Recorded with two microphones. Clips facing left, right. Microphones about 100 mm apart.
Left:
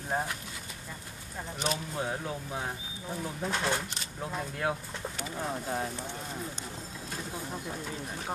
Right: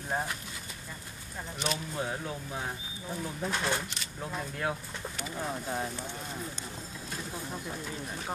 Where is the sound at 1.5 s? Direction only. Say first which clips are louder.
Left 1 dB; 40° left (ahead or behind).